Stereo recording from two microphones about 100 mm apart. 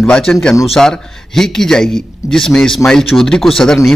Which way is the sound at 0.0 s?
5° left (ahead or behind).